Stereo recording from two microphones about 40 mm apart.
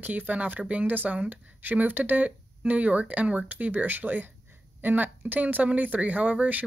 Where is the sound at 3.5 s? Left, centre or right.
Right.